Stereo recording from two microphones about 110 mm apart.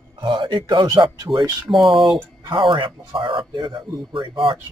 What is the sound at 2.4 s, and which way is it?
A man's voice, 50° right (ahead or behind).